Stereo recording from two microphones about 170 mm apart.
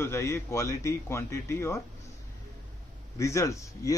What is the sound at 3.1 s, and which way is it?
Speech, 15° left (ahead or behind).